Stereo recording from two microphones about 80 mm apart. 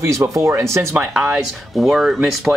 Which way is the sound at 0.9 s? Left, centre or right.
Centre.